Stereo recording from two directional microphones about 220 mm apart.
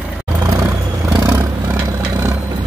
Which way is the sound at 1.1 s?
10° right (ahead or behind).